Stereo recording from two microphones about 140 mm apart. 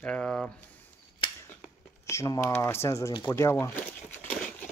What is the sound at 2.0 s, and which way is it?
Speech, 20° left (ahead or behind).